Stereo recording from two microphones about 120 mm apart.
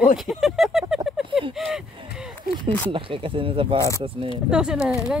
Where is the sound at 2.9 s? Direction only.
45° right (ahead or behind).